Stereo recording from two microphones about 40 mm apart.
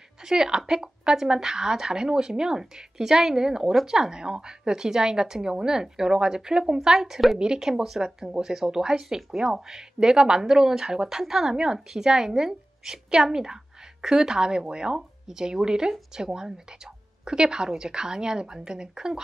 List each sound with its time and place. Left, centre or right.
0.2 s a woman's voice: centre